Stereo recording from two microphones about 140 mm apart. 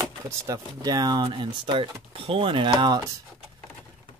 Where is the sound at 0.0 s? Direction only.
25° right (ahead or behind).